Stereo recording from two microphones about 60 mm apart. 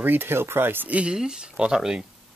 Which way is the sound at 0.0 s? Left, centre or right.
Right.